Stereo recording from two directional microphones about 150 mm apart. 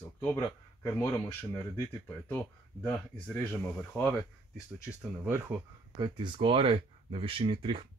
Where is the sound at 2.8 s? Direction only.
10° left (ahead or behind).